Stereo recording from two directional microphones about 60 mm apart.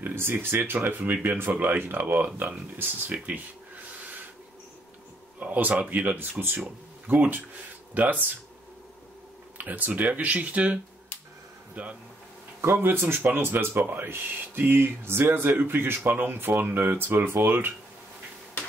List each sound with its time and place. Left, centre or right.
0.0 s speech: right
3.1 s a sound: right
5.4 s speech: right
7.1 s speech: right
9.6 s speech: right
12.6 s speech: right